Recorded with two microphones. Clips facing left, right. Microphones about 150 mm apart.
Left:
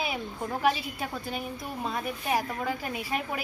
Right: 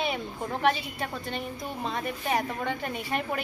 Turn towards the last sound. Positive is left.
turn(degrees=0)  # may be behind; listen again after turning